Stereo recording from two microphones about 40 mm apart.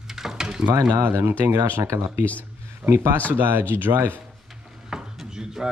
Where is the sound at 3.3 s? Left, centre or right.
Right.